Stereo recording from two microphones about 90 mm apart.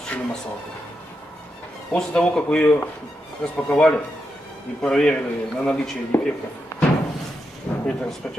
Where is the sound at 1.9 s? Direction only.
5° left (ahead or behind).